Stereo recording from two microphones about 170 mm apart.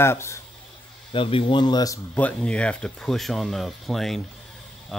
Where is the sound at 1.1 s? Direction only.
30° left (ahead or behind).